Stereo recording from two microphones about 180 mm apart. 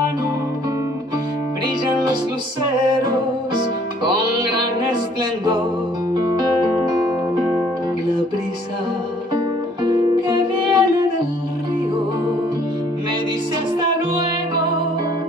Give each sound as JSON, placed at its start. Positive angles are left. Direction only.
{"t": 4.0, "sound": "music", "side_deg": -25}
{"t": 9.8, "sound": "music", "side_deg": -25}